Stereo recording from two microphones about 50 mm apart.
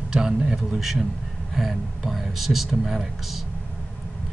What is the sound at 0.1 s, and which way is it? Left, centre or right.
Speech, centre.